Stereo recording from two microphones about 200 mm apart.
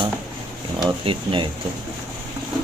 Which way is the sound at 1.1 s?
25° right (ahead or behind).